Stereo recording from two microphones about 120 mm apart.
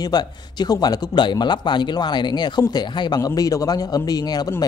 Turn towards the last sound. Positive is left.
turn(degrees=35)  # may be behind; listen again after turning